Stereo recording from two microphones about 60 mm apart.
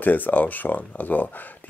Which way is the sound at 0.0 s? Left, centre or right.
Left.